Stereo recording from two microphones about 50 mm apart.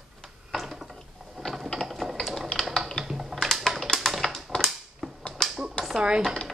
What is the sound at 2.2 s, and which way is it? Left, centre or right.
Typing, centre.